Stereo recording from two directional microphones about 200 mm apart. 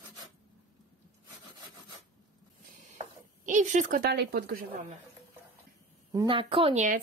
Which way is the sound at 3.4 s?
40° right (ahead or behind).